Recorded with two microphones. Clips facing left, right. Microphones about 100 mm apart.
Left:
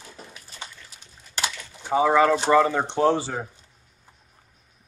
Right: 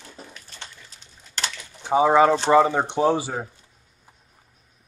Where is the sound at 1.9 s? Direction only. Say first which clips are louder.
Right 2 dB; 20° right (ahead or behind).